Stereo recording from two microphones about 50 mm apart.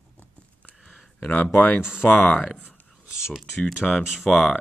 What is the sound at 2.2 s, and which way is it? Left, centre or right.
Speech, centre.